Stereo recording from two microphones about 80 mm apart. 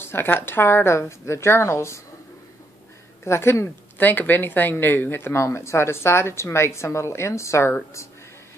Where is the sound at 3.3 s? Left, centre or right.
Left.